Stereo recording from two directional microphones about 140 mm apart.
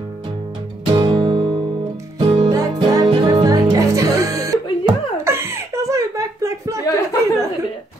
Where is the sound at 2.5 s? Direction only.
25° right (ahead or behind).